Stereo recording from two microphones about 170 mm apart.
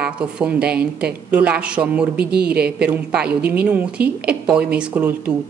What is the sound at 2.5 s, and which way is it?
Speech, 70° right (ahead or behind).